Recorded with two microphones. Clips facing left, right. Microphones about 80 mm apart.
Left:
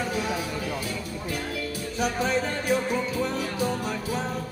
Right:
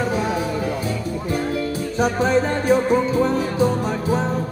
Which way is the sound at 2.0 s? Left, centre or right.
Right.